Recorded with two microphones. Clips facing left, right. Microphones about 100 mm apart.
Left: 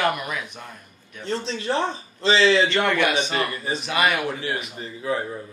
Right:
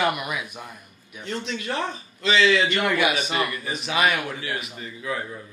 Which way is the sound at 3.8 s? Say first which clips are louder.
Even; centre (ahead or behind).